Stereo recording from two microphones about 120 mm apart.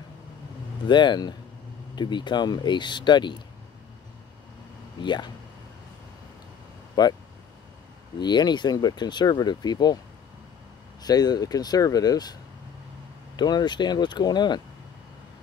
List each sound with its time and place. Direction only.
0.8 s speech: 40° left (ahead or behind)
5.0 s speech: 40° left (ahead or behind)
7.0 s speech: 35° left (ahead or behind)
8.2 s speech: 35° left (ahead or behind)
11.0 s speech: 35° left (ahead or behind)
13.4 s speech: 35° left (ahead or behind)